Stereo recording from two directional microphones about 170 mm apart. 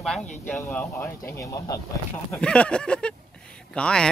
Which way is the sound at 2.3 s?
5° left (ahead or behind).